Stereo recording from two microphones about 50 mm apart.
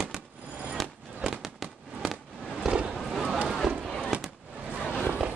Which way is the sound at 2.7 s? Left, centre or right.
Centre.